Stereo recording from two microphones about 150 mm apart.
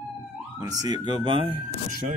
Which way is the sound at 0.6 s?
25° right (ahead or behind).